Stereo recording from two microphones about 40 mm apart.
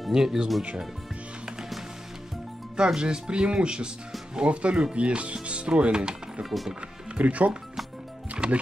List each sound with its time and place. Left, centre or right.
0.1 s speech: centre
2.8 s speech: right
6.4 s speech: centre
7.2 s speech: right
8.4 s speech: right